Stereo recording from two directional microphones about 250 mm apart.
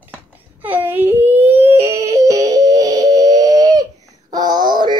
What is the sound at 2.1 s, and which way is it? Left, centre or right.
Music, centre.